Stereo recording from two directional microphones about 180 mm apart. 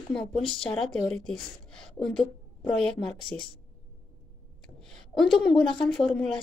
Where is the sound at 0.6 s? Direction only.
5° left (ahead or behind).